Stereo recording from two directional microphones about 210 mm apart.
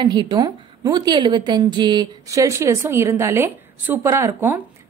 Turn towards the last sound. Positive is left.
turn(degrees=-10)  # may be behind; listen again after turning